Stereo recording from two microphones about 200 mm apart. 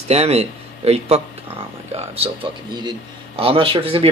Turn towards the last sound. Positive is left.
turn(degrees=-25)  # may be behind; listen again after turning